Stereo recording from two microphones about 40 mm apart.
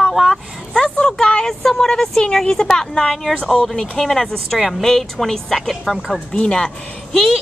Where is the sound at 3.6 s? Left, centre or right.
Centre.